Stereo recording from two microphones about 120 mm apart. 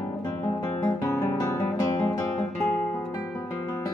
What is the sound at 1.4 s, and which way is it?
Music, 30° left (ahead or behind).